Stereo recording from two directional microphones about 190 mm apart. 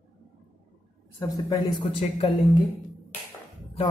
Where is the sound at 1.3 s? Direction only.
20° left (ahead or behind).